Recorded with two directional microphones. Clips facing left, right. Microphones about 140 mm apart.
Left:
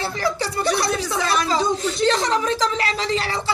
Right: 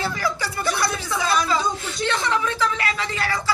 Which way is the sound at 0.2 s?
30° left (ahead or behind).